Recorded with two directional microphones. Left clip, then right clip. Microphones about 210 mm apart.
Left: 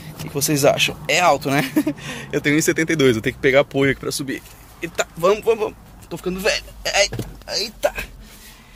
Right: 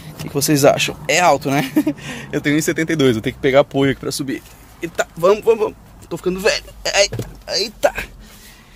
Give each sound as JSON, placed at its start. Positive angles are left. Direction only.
{"t": 0.2, "sound": "speech", "side_deg": -30}
{"t": 1.5, "sound": "speech", "side_deg": -10}